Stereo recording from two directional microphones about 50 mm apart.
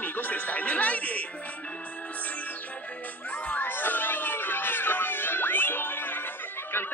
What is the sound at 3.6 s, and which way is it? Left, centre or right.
Music, left.